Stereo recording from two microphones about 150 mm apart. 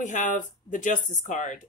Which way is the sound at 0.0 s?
55° left (ahead or behind).